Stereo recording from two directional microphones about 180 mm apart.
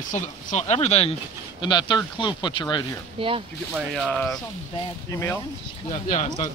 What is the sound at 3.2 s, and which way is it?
Speech, 30° right (ahead or behind).